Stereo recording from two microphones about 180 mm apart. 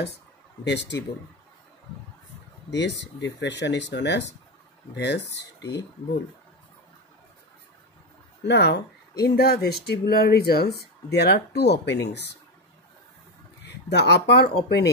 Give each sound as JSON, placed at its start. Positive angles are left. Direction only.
{"t": 0.7, "sound": "speech", "side_deg": 75}
{"t": 2.7, "sound": "speech", "side_deg": 80}
{"t": 8.5, "sound": "speech", "side_deg": 70}
{"t": 13.7, "sound": "speech", "side_deg": 70}